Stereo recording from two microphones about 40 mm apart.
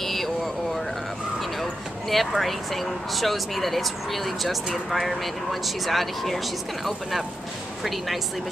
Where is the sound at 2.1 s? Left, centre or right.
Centre.